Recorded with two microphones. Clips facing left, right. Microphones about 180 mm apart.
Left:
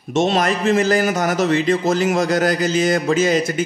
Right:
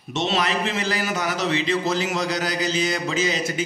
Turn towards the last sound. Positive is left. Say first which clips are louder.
# left 7 dB
turn(degrees=50)  # may be behind; listen again after turning